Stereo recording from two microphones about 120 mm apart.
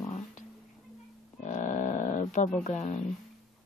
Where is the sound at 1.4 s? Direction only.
90° left.